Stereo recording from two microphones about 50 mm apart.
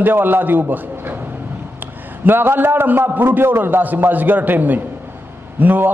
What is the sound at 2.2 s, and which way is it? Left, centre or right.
A man's voice, right.